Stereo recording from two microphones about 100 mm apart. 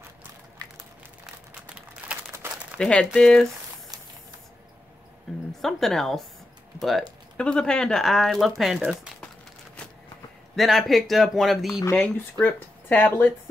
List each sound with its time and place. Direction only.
1.2 s crumpling: 10° right (ahead or behind)
2.4 s crumpling: 25° right (ahead or behind)
2.8 s speech: 10° left (ahead or behind)
5.6 s speech: 5° left (ahead or behind)
10.5 s speech: centre (ahead or behind)
12.0 s speech: 15° left (ahead or behind)